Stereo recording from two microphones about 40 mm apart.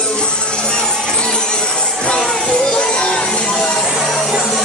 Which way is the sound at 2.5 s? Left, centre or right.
Left.